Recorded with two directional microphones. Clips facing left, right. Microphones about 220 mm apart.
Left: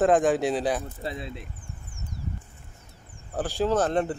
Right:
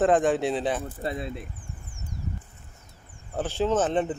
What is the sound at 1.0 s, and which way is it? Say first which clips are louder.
Speech: right 3 dB; 50° right (ahead or behind).